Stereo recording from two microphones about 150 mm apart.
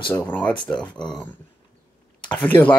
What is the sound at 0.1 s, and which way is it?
Speech, 10° left (ahead or behind).